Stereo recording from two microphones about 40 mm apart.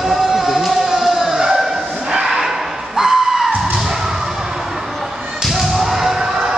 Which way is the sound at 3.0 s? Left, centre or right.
Centre.